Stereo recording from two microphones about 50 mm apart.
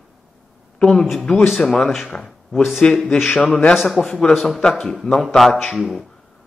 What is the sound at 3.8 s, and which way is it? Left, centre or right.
A man's voice, centre.